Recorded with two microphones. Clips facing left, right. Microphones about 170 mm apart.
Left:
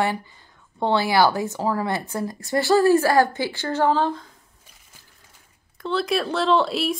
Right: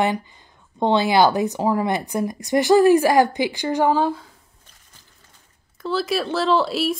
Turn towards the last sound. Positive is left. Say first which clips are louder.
# right 1 dB
turn(degrees=0)  # may be behind; listen again after turning